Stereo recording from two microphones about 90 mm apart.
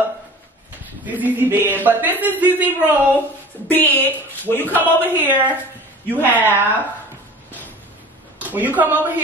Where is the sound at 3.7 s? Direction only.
20° left (ahead or behind).